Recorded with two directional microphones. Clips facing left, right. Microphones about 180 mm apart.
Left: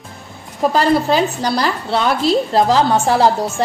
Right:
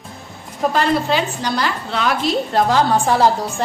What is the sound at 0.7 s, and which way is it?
A woman's voice, 35° left (ahead or behind).